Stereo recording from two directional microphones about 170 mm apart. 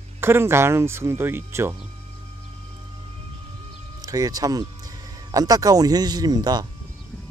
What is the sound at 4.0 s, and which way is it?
Speech, 20° right (ahead or behind).